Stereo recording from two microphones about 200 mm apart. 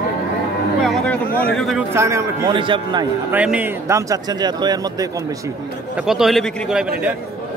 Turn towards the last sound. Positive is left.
turn(degrees=-5)  # may be behind; listen again after turning